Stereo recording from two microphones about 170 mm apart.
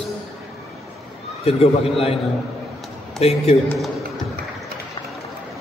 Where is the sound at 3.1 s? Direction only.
40° left (ahead or behind).